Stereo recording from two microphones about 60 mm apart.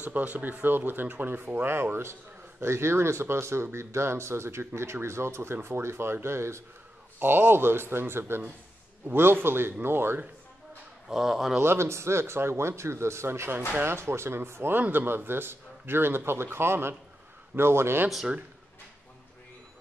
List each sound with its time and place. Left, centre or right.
0.0 s a man's voice: right
7.2 s a man's voice: right
11.1 s speech: centre
11.6 s a man's voice: right